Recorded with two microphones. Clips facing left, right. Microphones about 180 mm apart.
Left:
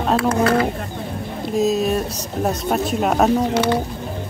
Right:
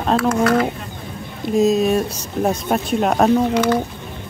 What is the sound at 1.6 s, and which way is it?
Speech, centre (ahead or behind).